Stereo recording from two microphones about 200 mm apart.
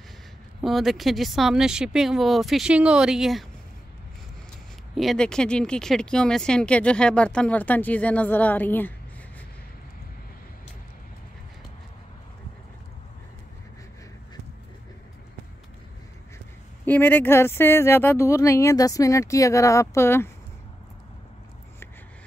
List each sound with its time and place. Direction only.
0.6 s speech: centre (ahead or behind)
4.9 s speech: centre (ahead or behind)
16.8 s speech: 10° left (ahead or behind)